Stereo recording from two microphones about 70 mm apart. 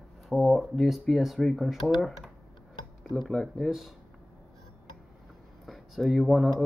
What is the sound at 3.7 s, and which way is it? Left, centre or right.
Speech, centre.